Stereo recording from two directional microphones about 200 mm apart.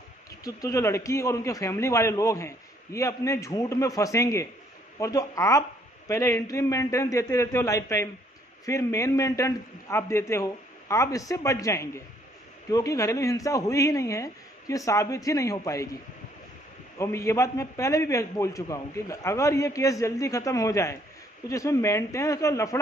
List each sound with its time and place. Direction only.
0.3 s a man's voice: 15° left (ahead or behind)
17.0 s a man's voice: 15° left (ahead or behind)